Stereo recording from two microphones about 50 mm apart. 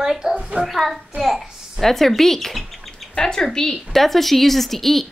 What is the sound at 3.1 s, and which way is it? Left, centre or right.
A woman's voice, centre.